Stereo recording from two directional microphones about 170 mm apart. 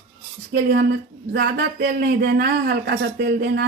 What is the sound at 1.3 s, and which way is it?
Speech, 70° right (ahead or behind).